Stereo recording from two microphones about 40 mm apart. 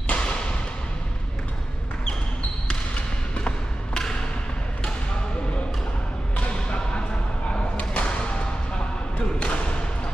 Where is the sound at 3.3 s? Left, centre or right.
Left.